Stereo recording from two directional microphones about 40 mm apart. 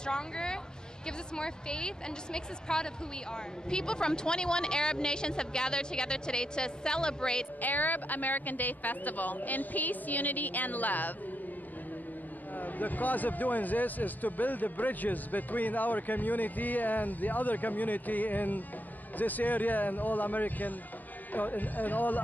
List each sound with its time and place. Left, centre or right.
0.0 s speech: left
7.6 s a man's voice: left
12.5 s a man's voice: left